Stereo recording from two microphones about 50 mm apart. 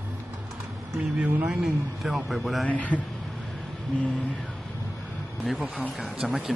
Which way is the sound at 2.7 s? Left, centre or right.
Left.